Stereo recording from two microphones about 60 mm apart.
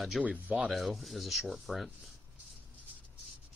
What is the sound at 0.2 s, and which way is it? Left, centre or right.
Speech, right.